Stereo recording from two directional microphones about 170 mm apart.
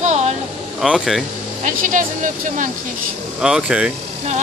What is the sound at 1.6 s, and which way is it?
Speech, 50° right (ahead or behind).